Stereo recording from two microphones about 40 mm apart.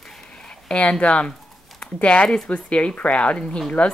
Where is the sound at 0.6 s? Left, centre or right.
Left.